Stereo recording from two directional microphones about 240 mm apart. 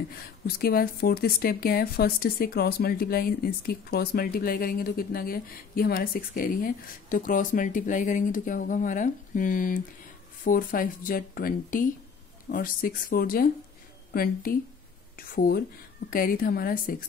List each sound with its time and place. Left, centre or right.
0.5 s speech: left